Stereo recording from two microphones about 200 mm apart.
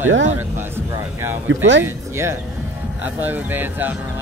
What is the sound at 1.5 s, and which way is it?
Speech, 65° right (ahead or behind).